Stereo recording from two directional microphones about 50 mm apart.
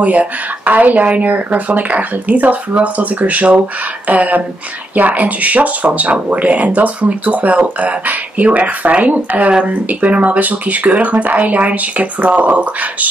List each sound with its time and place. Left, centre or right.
0.0 s speech: right